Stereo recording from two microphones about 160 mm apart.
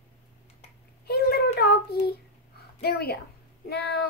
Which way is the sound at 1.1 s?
85° left.